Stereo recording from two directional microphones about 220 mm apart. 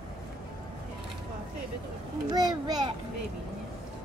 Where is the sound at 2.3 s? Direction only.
20° right (ahead or behind).